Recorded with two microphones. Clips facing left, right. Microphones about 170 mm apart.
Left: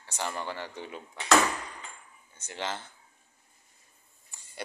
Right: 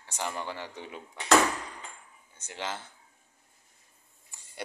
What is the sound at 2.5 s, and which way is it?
Speech, 5° right (ahead or behind).